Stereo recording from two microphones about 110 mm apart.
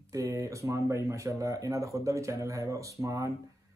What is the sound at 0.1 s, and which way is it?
Speech, 30° right (ahead or behind).